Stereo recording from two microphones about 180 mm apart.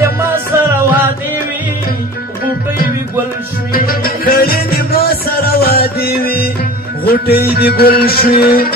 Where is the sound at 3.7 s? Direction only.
55° left (ahead or behind).